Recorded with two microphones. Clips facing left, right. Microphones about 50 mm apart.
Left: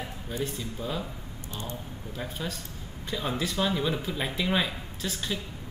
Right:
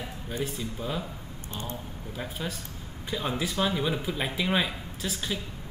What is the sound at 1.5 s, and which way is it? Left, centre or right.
Speech, right.